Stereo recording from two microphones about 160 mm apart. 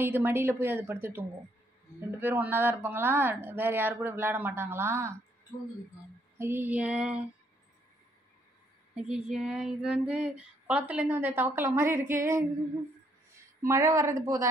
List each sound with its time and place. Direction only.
0.0 s speech: 15° right (ahead or behind)
6.3 s speech: 15° right (ahead or behind)
8.9 s speech: 5° right (ahead or behind)
13.6 s speech: 20° right (ahead or behind)